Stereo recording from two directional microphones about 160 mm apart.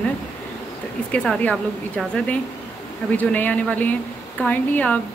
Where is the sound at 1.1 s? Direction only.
5° left (ahead or behind).